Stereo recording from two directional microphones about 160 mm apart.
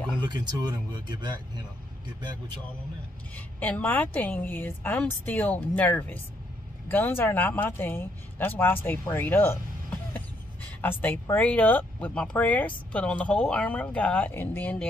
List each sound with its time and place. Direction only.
0.2 s speech: 25° right (ahead or behind)
3.3 s speech: 10° left (ahead or behind)